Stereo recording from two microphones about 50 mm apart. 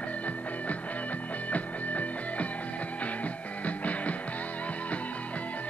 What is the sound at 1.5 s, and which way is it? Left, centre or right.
Music, left.